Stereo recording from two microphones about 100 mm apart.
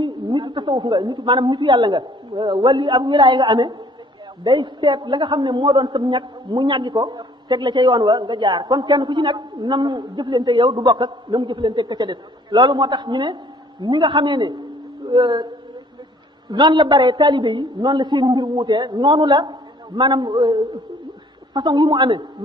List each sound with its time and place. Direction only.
0.4 s a man's voice: 50° right (ahead or behind)
16.4 s a man's voice: 50° right (ahead or behind)